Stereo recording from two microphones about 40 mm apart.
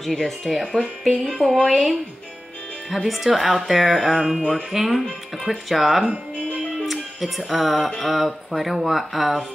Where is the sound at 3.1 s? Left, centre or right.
Centre.